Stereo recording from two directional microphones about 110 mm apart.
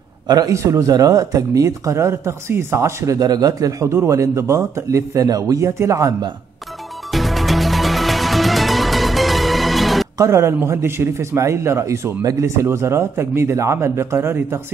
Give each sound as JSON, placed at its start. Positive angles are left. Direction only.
{"t": 0.3, "sound": "speech", "side_deg": -30}
{"t": 7.1, "sound": "music", "side_deg": 0}
{"t": 10.1, "sound": "speech", "side_deg": -25}